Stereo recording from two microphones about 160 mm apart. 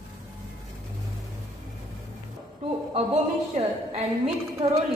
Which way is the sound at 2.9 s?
40° right (ahead or behind).